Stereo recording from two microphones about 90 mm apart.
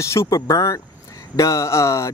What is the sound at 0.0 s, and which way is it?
Speech, 35° left (ahead or behind).